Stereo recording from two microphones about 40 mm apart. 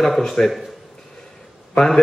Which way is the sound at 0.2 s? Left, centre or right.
Centre.